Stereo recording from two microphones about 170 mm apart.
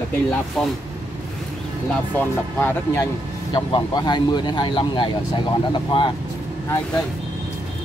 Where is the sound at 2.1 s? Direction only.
15° left (ahead or behind).